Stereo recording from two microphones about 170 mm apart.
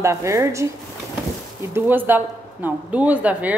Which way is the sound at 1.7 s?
10° right (ahead or behind).